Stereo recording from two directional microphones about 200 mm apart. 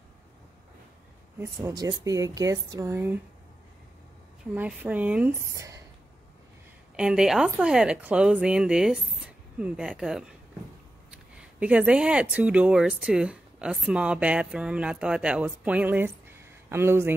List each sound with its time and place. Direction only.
1.4 s speech: 20° right (ahead or behind)
4.6 s speech: 5° right (ahead or behind)
7.0 s speech: 5° right (ahead or behind)
11.6 s speech: 5° right (ahead or behind)